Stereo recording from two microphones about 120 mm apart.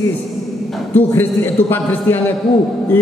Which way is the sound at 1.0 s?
15° left (ahead or behind).